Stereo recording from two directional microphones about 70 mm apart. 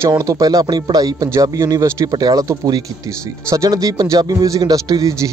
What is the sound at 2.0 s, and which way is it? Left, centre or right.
Speech, right.